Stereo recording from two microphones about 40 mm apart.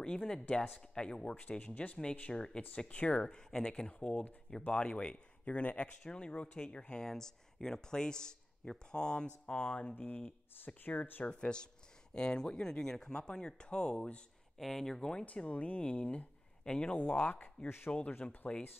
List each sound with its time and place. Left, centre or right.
0.0 s speech: left
1.6 s speech: left
3.3 s speech: centre
3.8 s speech: left
5.1 s speech: left
7.1 s speech: centre
9.5 s speech: left
11.3 s speech: left
14.6 s speech: centre
15.2 s speech: left